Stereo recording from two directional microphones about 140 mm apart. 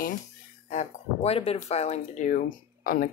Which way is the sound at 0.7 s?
55° left (ahead or behind).